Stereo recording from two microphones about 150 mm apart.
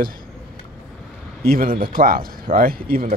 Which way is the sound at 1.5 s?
75° right (ahead or behind).